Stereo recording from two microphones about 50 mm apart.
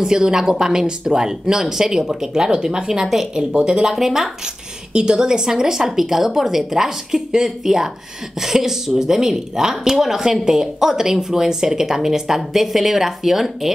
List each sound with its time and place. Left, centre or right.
0.0 s speech: centre
3.9 s speech: centre